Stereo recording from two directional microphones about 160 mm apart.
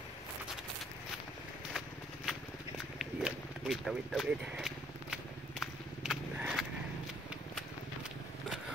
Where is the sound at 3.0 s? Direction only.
5° right (ahead or behind).